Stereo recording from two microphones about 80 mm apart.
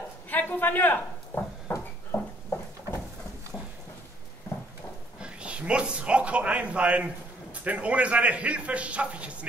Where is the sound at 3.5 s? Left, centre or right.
Centre.